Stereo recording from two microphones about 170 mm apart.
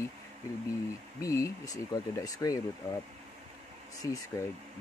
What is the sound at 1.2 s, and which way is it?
Speech, 20° left (ahead or behind).